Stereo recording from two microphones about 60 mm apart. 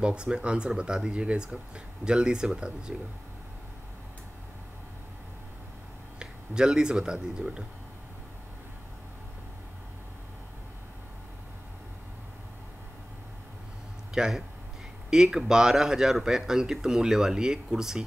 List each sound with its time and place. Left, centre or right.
0.0 s speech: centre
6.1 s speech: centre
14.1 s speech: centre